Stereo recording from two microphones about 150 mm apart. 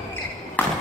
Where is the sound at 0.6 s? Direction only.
10° left (ahead or behind).